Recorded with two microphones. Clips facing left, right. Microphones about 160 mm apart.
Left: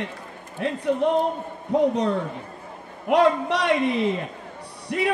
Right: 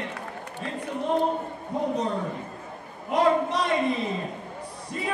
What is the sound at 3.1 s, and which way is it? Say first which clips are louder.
Speech: left 3 dB; 70° left (ahead or behind).